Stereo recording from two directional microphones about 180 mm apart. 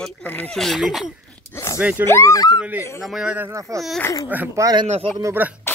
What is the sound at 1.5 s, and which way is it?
Zipper, 15° left (ahead or behind).